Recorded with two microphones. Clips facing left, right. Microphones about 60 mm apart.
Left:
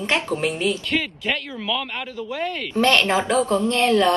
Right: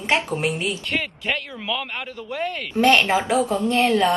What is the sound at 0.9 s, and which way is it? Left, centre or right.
A woman's voice, centre.